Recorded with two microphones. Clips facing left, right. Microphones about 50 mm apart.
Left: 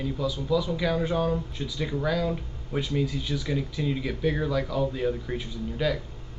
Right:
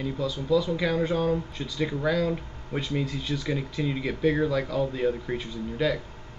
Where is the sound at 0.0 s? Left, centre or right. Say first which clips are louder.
Even; centre.